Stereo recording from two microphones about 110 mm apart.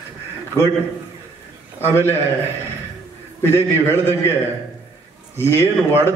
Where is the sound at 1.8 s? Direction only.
20° left (ahead or behind).